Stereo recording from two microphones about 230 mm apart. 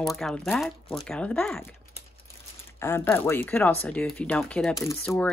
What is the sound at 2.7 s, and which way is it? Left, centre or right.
Speech, centre.